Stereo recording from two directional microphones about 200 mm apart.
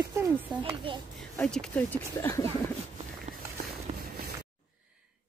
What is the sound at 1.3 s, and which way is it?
Speech, 5° left (ahead or behind).